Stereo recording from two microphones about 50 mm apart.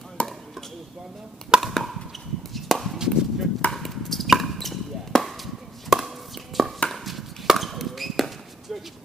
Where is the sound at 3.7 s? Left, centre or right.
Centre.